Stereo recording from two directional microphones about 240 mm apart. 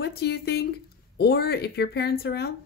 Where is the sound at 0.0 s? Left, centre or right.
Left.